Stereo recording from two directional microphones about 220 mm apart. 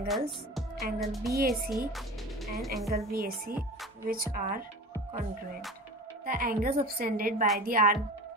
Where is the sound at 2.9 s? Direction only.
45° right (ahead or behind).